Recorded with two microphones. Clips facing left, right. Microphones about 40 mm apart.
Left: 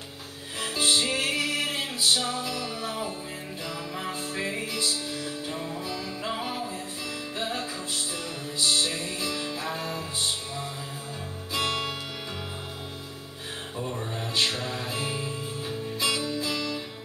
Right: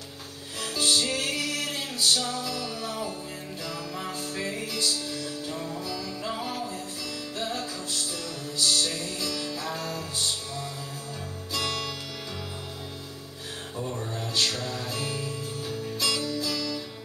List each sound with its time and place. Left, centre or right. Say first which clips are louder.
0.6 s music: left 1 dB; left
11.5 s music: left 2 dB; left
13.7 s music: even; centre